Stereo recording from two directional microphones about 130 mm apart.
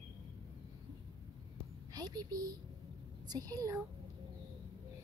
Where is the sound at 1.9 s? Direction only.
30° right (ahead or behind).